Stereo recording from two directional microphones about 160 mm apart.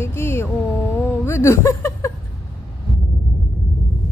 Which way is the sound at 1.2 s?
15° left (ahead or behind).